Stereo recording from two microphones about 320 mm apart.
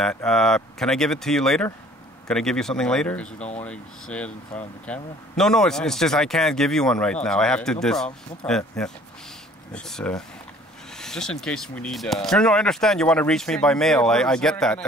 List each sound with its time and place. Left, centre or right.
0.0 s speech: centre
3.3 s speech: left
3.6 s speech: centre